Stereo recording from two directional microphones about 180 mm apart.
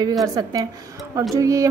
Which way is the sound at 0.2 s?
20° right (ahead or behind).